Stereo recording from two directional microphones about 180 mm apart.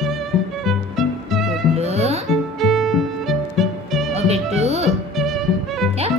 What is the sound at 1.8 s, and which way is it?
Music, 35° right (ahead or behind).